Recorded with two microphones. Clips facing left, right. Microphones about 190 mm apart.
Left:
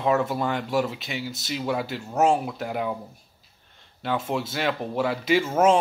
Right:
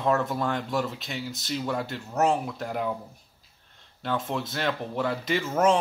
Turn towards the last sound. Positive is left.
turn(degrees=5)  # may be behind; listen again after turning